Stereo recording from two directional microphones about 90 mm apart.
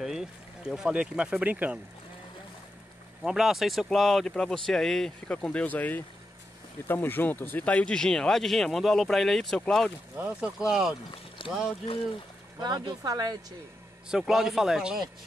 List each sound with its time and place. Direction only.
0.0 s speech: 5° right (ahead or behind)
3.3 s speech: 5° right (ahead or behind)
10.1 s speech: 15° right (ahead or behind)
11.4 s boat: 75° left (ahead or behind)
12.5 s speech: 55° right (ahead or behind)
14.0 s speech: 5° right (ahead or behind)